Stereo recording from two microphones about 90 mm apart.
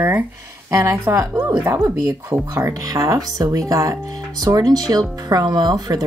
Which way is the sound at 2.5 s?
40° right (ahead or behind).